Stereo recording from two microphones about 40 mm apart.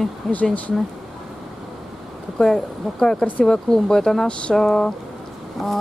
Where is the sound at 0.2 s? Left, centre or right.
Centre.